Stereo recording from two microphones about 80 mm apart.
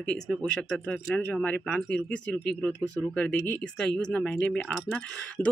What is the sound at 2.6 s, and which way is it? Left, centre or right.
Speech, centre.